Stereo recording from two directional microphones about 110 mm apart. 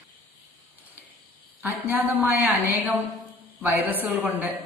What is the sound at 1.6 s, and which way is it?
A woman's voice, 15° right (ahead or behind).